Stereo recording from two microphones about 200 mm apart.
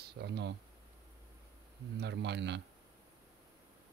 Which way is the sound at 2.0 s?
60° right (ahead or behind).